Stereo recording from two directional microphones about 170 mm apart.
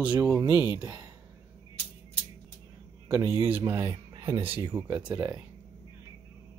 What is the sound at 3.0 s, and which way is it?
Speech, 15° right (ahead or behind).